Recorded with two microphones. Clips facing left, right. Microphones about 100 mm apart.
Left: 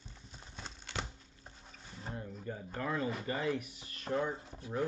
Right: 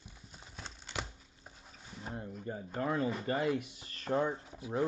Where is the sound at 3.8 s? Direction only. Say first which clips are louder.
Right 3 dB; 40° right (ahead or behind).